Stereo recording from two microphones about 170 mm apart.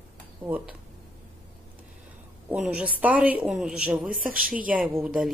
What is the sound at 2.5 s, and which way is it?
Speech, 5° right (ahead or behind).